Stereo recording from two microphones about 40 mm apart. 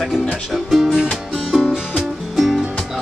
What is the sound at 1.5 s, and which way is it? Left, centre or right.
Music, centre.